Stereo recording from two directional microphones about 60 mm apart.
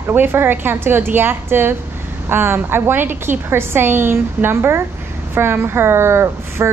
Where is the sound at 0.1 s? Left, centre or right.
Right.